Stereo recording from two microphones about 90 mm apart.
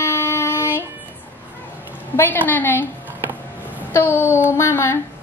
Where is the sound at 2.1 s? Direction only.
20° left (ahead or behind).